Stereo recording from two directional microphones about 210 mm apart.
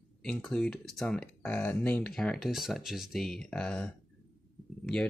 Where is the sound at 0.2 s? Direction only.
5° left (ahead or behind).